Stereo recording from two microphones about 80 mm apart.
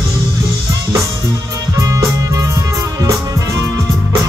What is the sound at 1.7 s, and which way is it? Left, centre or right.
Music, right.